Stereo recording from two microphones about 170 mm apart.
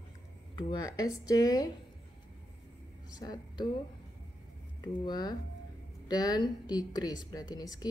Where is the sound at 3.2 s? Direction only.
20° left (ahead or behind).